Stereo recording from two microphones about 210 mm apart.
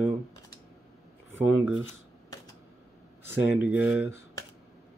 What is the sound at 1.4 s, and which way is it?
Speech, 5° right (ahead or behind).